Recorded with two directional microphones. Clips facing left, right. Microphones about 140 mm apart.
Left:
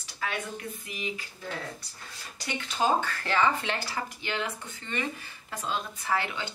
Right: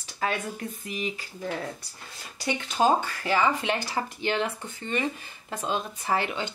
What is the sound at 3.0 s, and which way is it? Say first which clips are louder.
Speech: right 2 dB; 10° right (ahead or behind).